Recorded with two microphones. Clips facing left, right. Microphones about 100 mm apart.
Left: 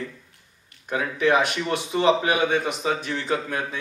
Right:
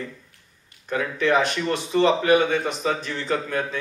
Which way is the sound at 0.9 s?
15° left (ahead or behind).